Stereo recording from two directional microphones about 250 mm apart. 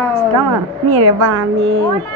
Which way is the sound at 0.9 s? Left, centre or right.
Right.